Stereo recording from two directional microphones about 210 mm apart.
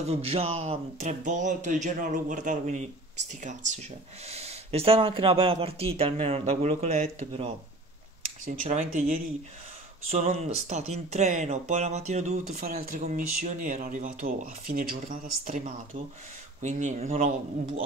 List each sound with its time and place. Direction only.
0.1 s speech: 30° right (ahead or behind)
10.1 s speech: 30° right (ahead or behind)